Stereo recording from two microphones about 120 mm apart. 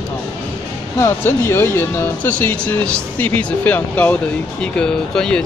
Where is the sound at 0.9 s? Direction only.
20° left (ahead or behind).